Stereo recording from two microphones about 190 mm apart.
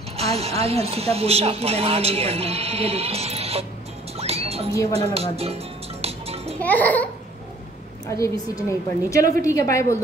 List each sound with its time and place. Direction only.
0.2 s speech: 30° right (ahead or behind)
4.2 s rodents: 30° right (ahead or behind)
4.9 s music: 30° right (ahead or behind)
6.6 s a woman's voice: 10° left (ahead or behind)
8.1 s a woman's voice: 15° left (ahead or behind)